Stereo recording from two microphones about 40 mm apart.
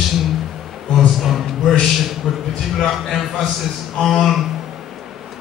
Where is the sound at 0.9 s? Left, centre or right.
Centre.